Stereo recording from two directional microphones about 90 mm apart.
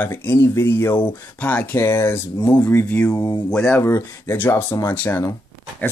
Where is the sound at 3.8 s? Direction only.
25° left (ahead or behind).